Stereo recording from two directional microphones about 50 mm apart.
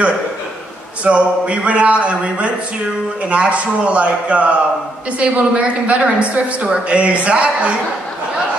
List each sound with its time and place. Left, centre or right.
1.0 s a woman's voice: right